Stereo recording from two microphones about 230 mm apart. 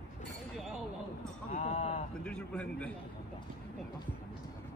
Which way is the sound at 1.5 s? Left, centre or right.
Left.